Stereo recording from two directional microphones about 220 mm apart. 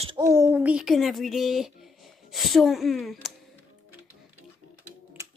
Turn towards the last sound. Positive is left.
turn(degrees=-15)  # may be behind; listen again after turning